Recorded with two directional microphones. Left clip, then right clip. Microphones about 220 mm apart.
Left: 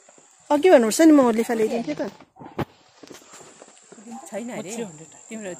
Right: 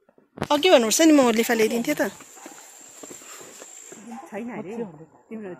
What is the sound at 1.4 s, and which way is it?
Speech, centre (ahead or behind).